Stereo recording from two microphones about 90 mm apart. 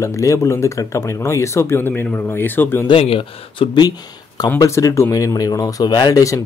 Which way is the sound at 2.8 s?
80° left.